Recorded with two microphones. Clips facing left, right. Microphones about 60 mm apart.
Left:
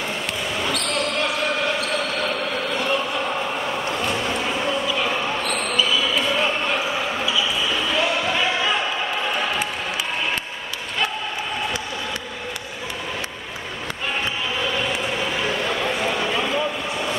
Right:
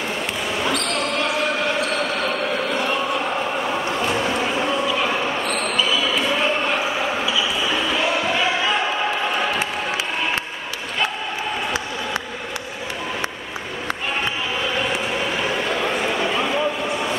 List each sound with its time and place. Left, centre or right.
0.7 s basketball bounce: centre
4.2 s music: centre
5.5 s basketball bounce: centre
15.8 s a sound: centre